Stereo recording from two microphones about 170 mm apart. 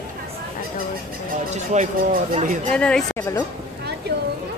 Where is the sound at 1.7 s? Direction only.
45° right (ahead or behind).